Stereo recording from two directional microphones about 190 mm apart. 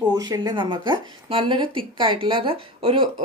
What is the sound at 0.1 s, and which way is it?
Speech, 20° right (ahead or behind).